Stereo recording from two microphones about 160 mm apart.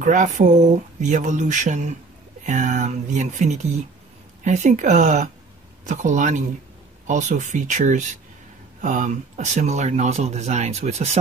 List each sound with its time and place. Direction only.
0.0 s speech: 50° right (ahead or behind)